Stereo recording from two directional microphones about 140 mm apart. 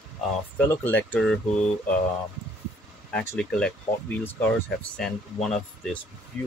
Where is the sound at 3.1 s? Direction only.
5° left (ahead or behind).